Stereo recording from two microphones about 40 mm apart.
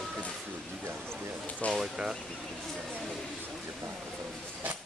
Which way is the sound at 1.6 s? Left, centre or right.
Left.